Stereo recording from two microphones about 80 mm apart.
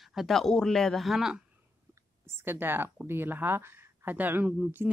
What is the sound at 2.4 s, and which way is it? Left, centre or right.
Speech, right.